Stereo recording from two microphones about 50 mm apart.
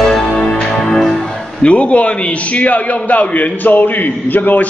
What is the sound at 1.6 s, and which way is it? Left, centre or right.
A man's voice, left.